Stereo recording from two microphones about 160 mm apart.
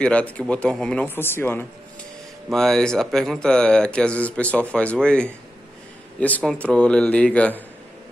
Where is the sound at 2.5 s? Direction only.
5° left (ahead or behind).